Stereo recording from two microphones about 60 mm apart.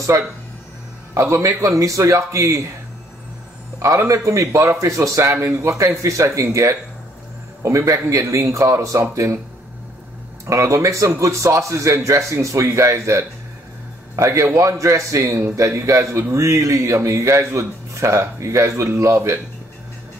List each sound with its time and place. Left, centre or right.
0.1 s speech: right
1.1 s a man's voice: right
1.6 s speech: right
3.8 s speech: right
10.4 s speech: right